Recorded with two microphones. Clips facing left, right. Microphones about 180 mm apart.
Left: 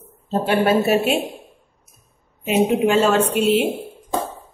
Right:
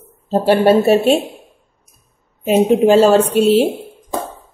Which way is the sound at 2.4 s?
35° right (ahead or behind).